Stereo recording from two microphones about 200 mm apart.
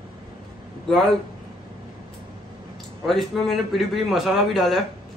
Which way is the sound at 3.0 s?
Centre (ahead or behind).